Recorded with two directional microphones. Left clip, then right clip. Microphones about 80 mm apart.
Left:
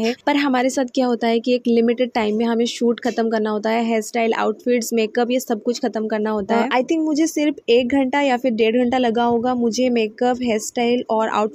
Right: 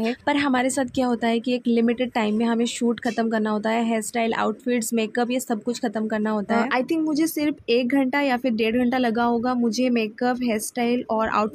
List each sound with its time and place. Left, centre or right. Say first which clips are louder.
0.0 s speech: left 4 dB; left